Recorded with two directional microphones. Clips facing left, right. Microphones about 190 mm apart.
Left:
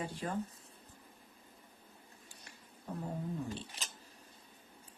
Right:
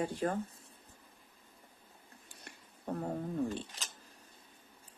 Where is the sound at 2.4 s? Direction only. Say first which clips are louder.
Right 3 dB; 60° right (ahead or behind).